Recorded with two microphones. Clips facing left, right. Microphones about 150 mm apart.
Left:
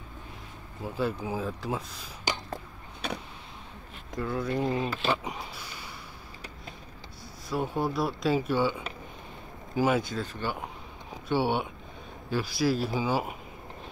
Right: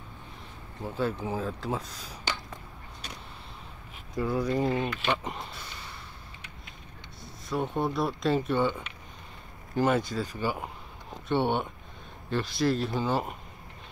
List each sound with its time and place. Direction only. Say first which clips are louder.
0.8 s speech: even; 5° left (ahead or behind)
4.2 s speech: right 2 dB; centre (ahead or behind)
4.7 s speech: even; 35° left (ahead or behind)
5.1 s speech: left 1 dB; 5° left (ahead or behind)
7.4 s speech: even; 5° left (ahead or behind)